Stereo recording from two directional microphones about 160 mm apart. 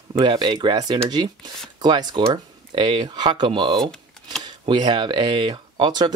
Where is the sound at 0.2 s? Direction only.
25° right (ahead or behind).